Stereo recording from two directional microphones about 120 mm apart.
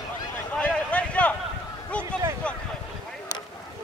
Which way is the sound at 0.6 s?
10° left (ahead or behind).